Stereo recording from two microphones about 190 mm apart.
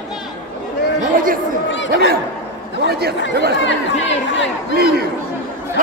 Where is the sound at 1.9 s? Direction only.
55° right (ahead or behind).